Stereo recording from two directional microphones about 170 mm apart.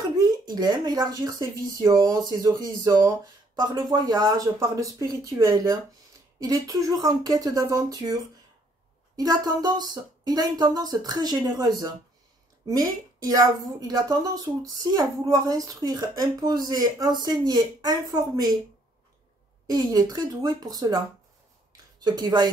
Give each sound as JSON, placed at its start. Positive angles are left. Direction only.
{"t": 0.2, "sound": "speech", "side_deg": -25}
{"t": 19.7, "sound": "speech", "side_deg": -25}